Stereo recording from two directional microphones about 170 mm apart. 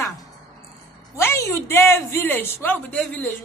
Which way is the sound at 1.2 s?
15° left (ahead or behind).